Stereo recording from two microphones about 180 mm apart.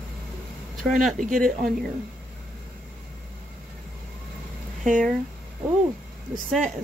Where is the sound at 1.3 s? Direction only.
50° right (ahead or behind).